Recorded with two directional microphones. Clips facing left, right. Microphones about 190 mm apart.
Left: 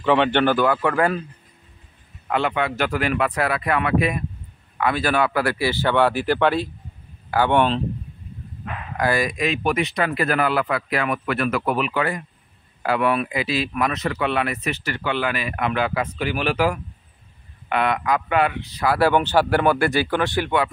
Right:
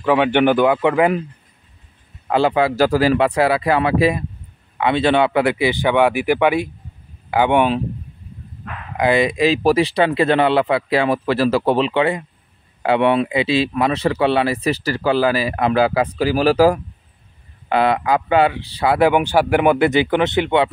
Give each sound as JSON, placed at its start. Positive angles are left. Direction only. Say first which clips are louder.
{"t": 0.0, "sound": "speech", "louder": "right 3 dB", "side_deg": -10}
{"t": 2.2, "sound": "speech", "louder": "right 6 dB", "side_deg": -30}
{"t": 8.9, "sound": "speech", "louder": "right 6 dB", "side_deg": -20}
{"t": 18.9, "sound": "speech", "louder": "right 3 dB", "side_deg": -15}